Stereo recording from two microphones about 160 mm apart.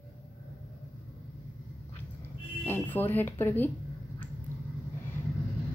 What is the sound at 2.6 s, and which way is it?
Speech, 15° left (ahead or behind).